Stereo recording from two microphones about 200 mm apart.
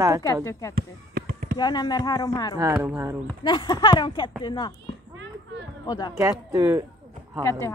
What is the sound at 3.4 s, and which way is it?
Speech, 20° left (ahead or behind).